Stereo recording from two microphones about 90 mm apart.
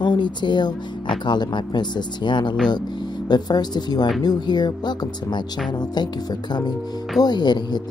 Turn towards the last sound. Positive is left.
turn(degrees=55)  # may be behind; listen again after turning